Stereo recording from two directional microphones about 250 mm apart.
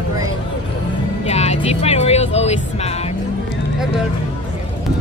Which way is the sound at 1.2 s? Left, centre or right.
Left.